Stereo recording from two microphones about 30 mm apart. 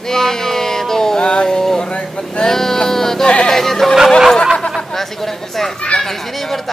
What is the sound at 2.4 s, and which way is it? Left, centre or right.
Speech, centre.